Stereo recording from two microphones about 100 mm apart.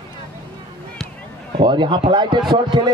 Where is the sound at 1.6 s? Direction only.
50° right (ahead or behind).